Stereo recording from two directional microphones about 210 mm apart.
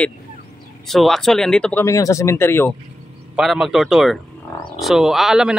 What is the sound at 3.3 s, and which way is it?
Speech, centre (ahead or behind).